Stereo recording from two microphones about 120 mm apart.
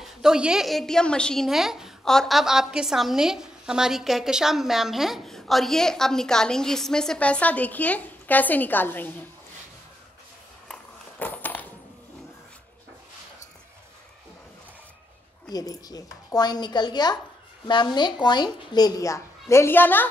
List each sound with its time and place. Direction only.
0.0 s a woman's voice: 5° right (ahead or behind); by 9.1 s 15° left (ahead or behind)
10.7 s a sound: 10° left (ahead or behind)
15.5 s a child's voice: 30° left (ahead or behind); by 20.1 s 15° left (ahead or behind)